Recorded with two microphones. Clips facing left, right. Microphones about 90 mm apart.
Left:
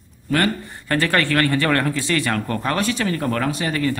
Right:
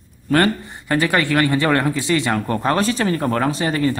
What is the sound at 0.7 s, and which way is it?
Speech, 15° right (ahead or behind).